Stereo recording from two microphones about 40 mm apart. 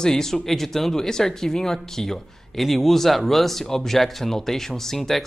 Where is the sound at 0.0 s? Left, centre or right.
Centre.